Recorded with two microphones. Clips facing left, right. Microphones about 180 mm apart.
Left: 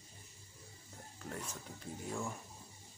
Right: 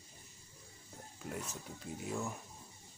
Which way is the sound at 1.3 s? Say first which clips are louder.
Right 2 dB; 10° right (ahead or behind).